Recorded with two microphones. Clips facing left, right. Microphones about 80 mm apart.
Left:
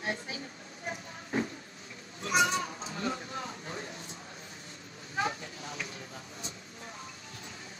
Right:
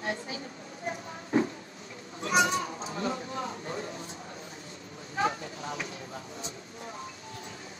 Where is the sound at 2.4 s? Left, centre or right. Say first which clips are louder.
Right 2 dB; right.